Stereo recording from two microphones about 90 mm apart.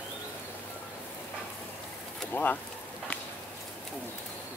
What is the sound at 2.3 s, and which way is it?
Speech, 20° left (ahead or behind).